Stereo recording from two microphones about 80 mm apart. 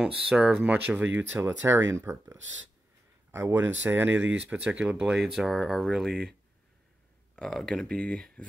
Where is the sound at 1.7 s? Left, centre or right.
Right; by 6.3 s centre.